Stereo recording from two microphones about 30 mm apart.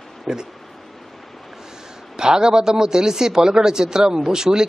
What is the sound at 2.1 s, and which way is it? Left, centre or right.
A man's voice, right.